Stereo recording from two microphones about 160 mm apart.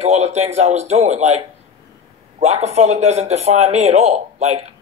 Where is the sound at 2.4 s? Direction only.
40° right (ahead or behind).